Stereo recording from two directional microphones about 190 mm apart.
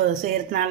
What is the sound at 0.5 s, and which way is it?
Speech, 45° right (ahead or behind).